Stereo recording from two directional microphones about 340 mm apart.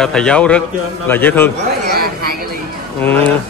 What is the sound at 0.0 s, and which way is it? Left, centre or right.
A man's voice, centre.